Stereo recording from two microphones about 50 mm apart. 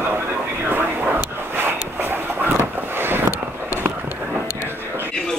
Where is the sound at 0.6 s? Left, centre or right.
Right.